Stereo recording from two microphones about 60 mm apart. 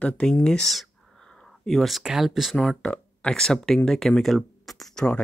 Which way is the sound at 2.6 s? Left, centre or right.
Centre.